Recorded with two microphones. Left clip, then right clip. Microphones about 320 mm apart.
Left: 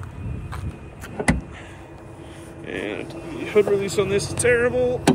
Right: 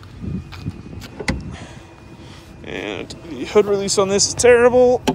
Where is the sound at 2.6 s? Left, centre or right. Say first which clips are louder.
Right 2 dB; centre.